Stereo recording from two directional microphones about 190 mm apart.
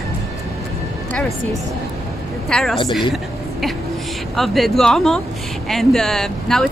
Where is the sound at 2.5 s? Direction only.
5° left (ahead or behind).